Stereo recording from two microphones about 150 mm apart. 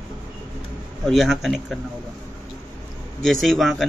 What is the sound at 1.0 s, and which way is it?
Speech, centre (ahead or behind).